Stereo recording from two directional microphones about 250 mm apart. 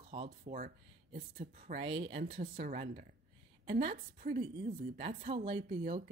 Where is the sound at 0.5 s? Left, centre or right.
Right.